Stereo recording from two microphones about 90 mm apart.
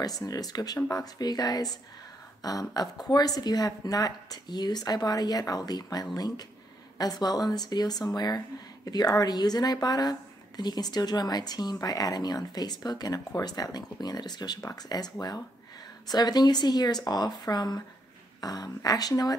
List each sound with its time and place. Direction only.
0.0 s speech: 45° left (ahead or behind)
2.7 s speech: 45° left (ahead or behind)